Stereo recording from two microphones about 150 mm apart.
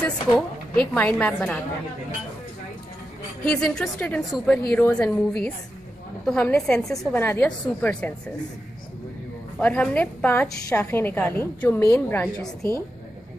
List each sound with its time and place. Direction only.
0.7 s a woman's voice: 5° left (ahead or behind)
3.4 s a woman's voice: 5° left (ahead or behind)
9.6 s a woman's voice: 10° left (ahead or behind)